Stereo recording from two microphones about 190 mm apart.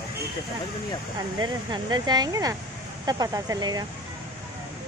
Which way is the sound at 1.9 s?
20° right (ahead or behind).